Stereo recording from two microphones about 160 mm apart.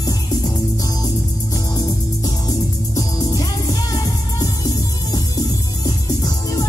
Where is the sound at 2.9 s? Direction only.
20° left (ahead or behind).